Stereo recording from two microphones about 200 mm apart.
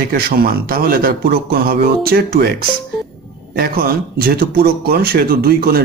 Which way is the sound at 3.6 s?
50° right (ahead or behind).